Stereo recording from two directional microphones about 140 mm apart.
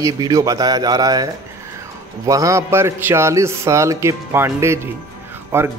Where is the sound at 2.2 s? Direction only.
25° right (ahead or behind).